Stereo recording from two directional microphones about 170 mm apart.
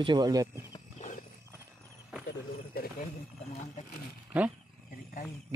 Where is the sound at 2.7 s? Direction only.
60° left (ahead or behind).